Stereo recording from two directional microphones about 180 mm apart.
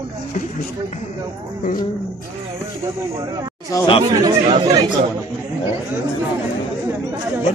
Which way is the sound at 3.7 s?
20° left (ahead or behind).